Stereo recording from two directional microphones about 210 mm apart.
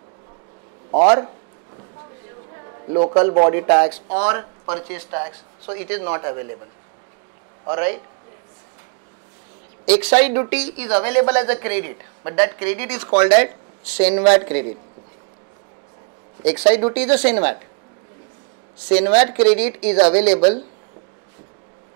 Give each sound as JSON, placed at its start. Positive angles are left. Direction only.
{"t": 2.5, "sound": "a sound", "side_deg": -20}
{"t": 3.4, "sound": "speech", "side_deg": -15}
{"t": 7.6, "sound": "speech", "side_deg": -10}
{"t": 9.8, "sound": "speech", "side_deg": -10}
{"t": 16.4, "sound": "speech", "side_deg": -10}
{"t": 18.8, "sound": "speech", "side_deg": -10}